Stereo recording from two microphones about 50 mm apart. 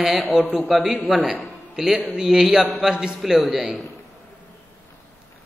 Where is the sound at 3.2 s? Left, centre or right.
Centre.